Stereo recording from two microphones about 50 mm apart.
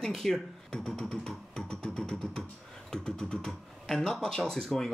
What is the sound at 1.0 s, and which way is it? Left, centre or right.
Speech, centre.